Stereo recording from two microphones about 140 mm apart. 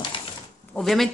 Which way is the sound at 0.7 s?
Centre (ahead or behind).